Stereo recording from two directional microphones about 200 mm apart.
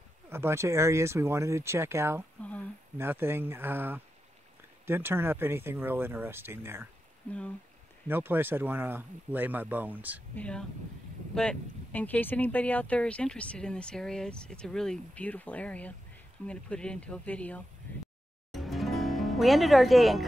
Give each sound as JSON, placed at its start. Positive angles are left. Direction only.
{"t": 0.3, "sound": "speech", "side_deg": -10}
{"t": 8.1, "sound": "speech", "side_deg": -10}
{"t": 10.3, "sound": "speech", "side_deg": 5}
{"t": 18.5, "sound": "music", "side_deg": 0}